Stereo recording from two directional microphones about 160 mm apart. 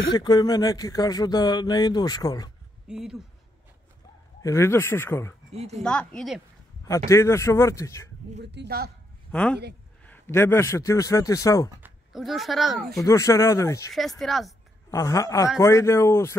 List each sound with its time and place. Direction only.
0.1 s speech: 25° left (ahead or behind)
2.9 s speech: 5° right (ahead or behind)
4.4 s speech: 20° left (ahead or behind)
5.5 s speech: 40° right (ahead or behind)
5.8 s speech: 5° left (ahead or behind)
7.1 s speech: 15° left (ahead or behind)
8.4 s a man's voice: 90° right
9.3 s speech: 10° left (ahead or behind)
12.1 s speech: centre (ahead or behind)
13.0 s speech: 20° left (ahead or behind)
13.9 s speech: centre (ahead or behind)
14.9 s speech: 20° left (ahead or behind)